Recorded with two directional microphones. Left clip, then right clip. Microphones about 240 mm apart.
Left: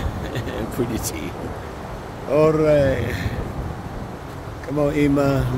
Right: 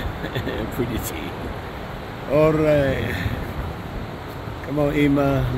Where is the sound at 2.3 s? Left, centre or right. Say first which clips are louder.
Left 1 dB; centre.